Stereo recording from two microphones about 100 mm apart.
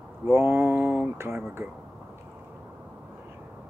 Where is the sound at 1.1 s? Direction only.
25° right (ahead or behind).